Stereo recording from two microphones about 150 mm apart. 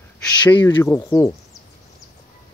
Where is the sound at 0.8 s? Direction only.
20° left (ahead or behind).